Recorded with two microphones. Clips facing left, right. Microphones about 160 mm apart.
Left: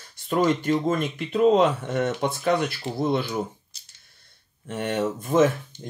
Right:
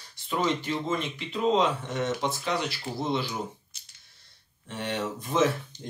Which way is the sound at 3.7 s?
35° left (ahead or behind).